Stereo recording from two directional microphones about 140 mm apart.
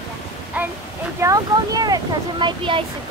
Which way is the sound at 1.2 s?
25° right (ahead or behind).